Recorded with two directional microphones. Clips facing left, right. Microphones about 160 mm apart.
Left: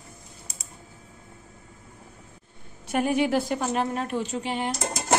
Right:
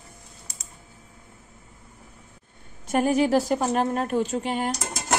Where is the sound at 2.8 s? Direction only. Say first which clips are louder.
Right 2 dB; 40° right (ahead or behind).